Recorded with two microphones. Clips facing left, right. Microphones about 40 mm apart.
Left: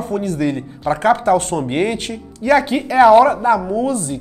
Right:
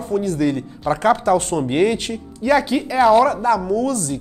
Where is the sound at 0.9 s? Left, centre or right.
Centre.